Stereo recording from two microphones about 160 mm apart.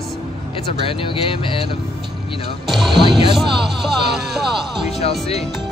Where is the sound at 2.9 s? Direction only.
30° right (ahead or behind).